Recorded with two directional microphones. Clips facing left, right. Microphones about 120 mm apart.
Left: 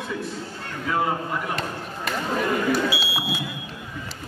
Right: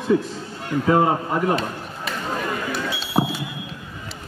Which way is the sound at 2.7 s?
5° left (ahead or behind).